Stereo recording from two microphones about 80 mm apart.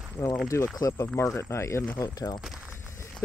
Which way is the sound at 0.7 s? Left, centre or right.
Left.